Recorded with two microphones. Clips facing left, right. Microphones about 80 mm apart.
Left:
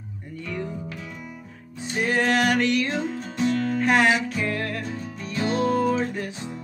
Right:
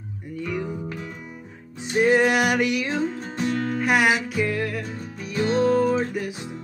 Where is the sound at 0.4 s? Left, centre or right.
Centre.